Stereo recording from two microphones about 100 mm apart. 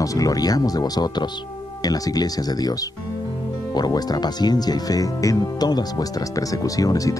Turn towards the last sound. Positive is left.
turn(degrees=35)  # may be behind; listen again after turning